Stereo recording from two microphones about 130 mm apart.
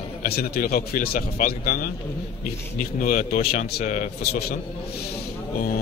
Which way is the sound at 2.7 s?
90° left.